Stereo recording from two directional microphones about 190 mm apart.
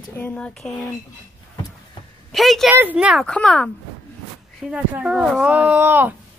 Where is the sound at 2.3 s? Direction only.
Centre (ahead or behind).